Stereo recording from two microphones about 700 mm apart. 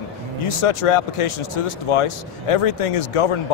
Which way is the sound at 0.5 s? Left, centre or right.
Left.